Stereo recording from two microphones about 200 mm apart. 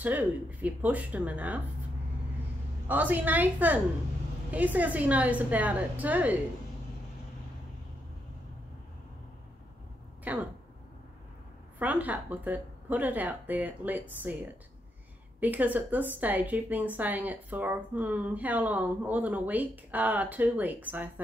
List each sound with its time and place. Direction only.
0.0 s a woman's voice: 10° right (ahead or behind)
2.9 s a woman's voice: 10° right (ahead or behind)
10.2 s speech: 5° right (ahead or behind)
11.8 s a woman's voice: 5° right (ahead or behind)